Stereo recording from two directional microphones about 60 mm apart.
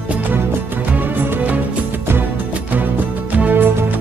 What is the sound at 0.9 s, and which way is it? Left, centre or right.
Music, right.